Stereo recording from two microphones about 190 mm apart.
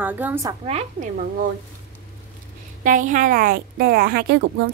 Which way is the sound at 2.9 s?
40° right (ahead or behind).